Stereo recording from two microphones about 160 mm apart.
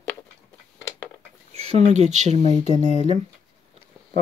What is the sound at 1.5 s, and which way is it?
Speech, 40° right (ahead or behind).